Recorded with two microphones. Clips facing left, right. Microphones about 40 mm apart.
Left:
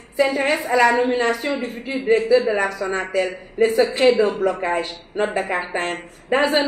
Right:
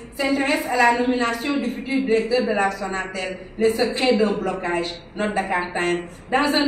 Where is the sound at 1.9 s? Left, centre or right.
Left.